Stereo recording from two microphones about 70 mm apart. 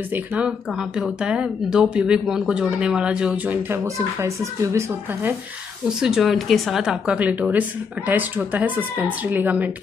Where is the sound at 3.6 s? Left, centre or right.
Right.